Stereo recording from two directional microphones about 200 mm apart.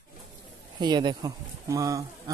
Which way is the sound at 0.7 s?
20° right (ahead or behind).